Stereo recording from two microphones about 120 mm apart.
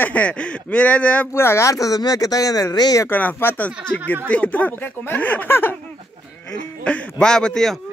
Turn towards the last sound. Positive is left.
turn(degrees=5)  # may be behind; listen again after turning